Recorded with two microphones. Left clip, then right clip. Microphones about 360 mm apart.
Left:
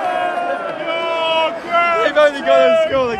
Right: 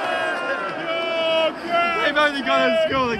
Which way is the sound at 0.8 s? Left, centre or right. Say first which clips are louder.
Left 4 dB; centre.